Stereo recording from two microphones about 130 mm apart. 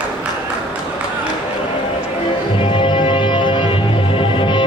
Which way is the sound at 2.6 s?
40° left (ahead or behind).